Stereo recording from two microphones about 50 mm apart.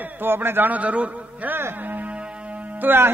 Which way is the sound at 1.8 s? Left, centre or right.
Right.